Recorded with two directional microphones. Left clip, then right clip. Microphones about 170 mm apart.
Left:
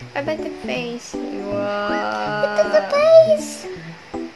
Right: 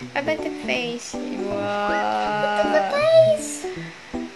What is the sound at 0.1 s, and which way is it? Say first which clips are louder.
Speech: even; centre (ahead or behind).